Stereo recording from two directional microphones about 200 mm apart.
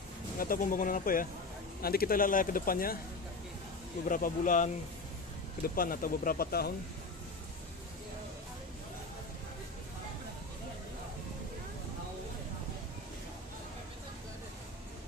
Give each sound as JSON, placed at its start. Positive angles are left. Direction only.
{"t": 0.4, "sound": "speech", "side_deg": 45}
{"t": 4.1, "sound": "speech", "side_deg": 40}